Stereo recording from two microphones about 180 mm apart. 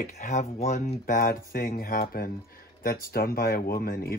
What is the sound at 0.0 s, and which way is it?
Speech, 40° left (ahead or behind).